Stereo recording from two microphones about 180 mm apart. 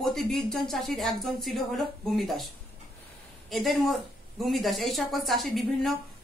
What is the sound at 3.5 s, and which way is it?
A woman's voice, centre (ahead or behind).